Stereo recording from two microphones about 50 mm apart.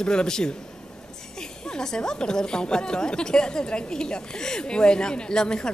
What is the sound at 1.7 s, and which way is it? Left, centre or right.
A woman's voice, centre.